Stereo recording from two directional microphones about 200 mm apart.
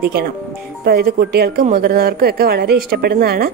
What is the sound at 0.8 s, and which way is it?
Speech, 50° right (ahead or behind).